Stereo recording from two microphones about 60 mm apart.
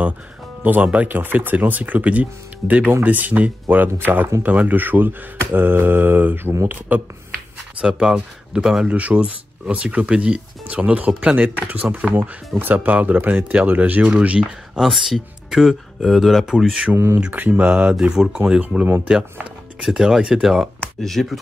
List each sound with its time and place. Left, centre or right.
0.7 s speech: right
4.4 s mantra: right
6.9 s speech: right
7.8 s speech: centre
14.8 s speech: centre
16.9 s speech: right
17.3 s speech: right
17.9 s speech: centre
19.8 s speech: centre
21.0 s speech: centre